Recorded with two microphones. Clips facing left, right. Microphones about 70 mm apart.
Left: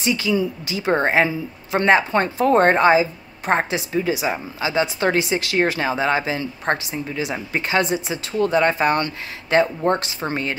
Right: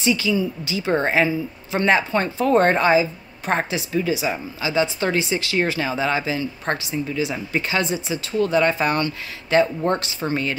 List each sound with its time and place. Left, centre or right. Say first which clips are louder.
0.0 s speech: even; left
1.2 s speech: even; left
1.9 s speech: left 2 dB; left